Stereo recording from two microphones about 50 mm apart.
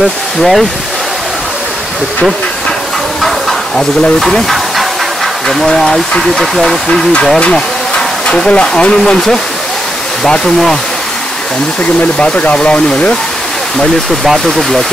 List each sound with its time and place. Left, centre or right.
0.4 s speech: centre
3.2 s a sound: centre
5.5 s speech: centre
7.3 s speech: centre
8.9 s speech: centre
12.5 s speech: left